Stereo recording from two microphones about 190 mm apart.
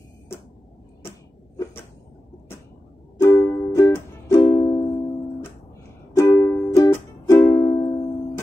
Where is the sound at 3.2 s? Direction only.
15° left (ahead or behind).